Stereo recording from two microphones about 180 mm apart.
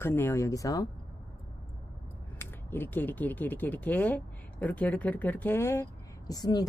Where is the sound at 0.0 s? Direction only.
15° left (ahead or behind).